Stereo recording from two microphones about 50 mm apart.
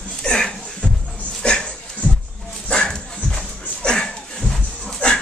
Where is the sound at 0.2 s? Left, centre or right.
Centre.